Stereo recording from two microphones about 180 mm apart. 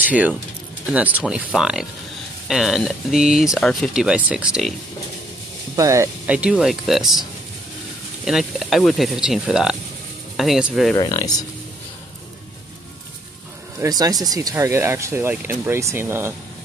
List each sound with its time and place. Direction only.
0.9 s speech: 5° right (ahead or behind)
5.8 s speech: 15° right (ahead or behind)
6.5 s speech: centre (ahead or behind)
8.3 s speech: centre (ahead or behind)
11.0 s speech: 20° left (ahead or behind)
13.7 s speech: 20° right (ahead or behind)